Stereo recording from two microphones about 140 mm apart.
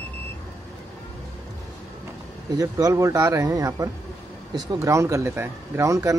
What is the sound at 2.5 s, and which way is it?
Speech, 25° right (ahead or behind).